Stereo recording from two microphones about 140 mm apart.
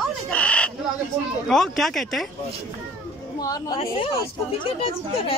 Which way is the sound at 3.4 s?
25° left (ahead or behind).